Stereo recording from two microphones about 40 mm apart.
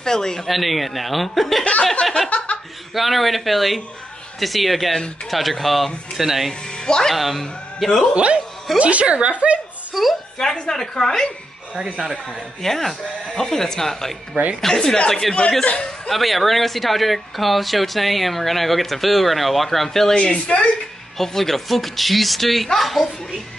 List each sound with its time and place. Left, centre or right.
0.0 s a woman's voice: centre
0.5 s speech: centre
1.6 s speech: left
2.2 s chuckle: left
2.9 s speech: centre
6.7 s speech: left
7.2 s a man's voice: centre
8.1 s a woman's voice: right
9.9 s a woman's voice: centre
10.4 s a woman's voice: centre
12.3 s a woman's voice: centre
16.1 s speech: centre
20.2 s speech: left
21.2 s speech: centre